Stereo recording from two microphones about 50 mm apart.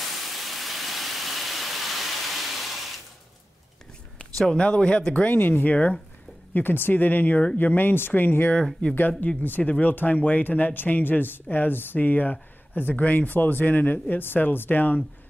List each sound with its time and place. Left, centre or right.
0.0 s a sound: centre
4.5 s speech: left
6.5 s speech: left
8.8 s speech: left
9.2 s speech: left